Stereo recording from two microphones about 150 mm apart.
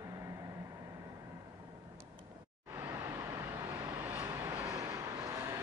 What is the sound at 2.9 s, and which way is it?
Vehicle, 20° right (ahead or behind).